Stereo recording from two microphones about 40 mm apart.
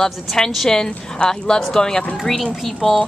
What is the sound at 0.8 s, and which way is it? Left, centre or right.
A woman's voice, left.